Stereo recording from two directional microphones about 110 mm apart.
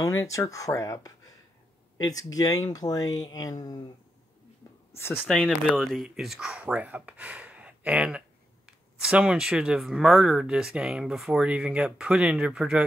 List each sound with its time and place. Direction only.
0.0 s speech: 30° left (ahead or behind)
4.9 s speech: 20° left (ahead or behind)
5.8 s speech: centre (ahead or behind)